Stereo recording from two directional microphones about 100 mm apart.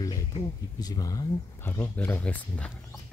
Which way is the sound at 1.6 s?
20° left (ahead or behind).